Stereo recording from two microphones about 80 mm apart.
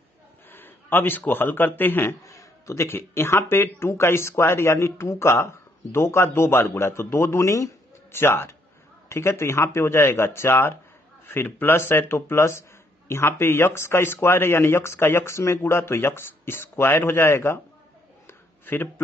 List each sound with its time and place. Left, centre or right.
0.5 s a man's voice: left
2.2 s a man's voice: left
18.2 s a sound: left